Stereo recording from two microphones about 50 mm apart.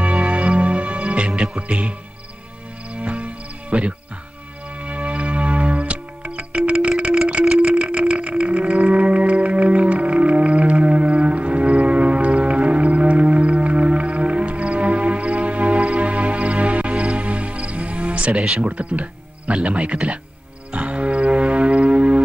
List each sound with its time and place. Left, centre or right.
0.0 s music: right
1.6 s speech: right
2.9 s music: right
3.7 s speech: right
4.7 s music: right
18.6 s speech: right
20.7 s music: right